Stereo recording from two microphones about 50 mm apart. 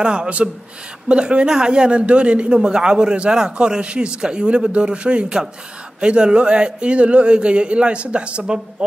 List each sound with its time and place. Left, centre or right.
0.0 s speech: centre